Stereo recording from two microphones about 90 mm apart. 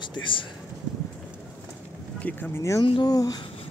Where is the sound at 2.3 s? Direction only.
15° left (ahead or behind).